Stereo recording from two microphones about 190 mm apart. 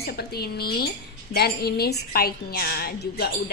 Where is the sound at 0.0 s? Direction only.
55° left (ahead or behind).